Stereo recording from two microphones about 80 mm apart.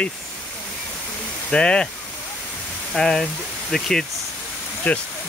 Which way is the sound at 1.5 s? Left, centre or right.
Centre.